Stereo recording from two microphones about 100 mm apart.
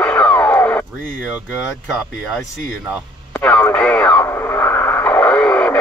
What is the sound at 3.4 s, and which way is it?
Radio, 15° left (ahead or behind).